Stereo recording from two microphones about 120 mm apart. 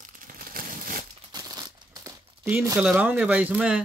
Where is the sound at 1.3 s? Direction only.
30° right (ahead or behind).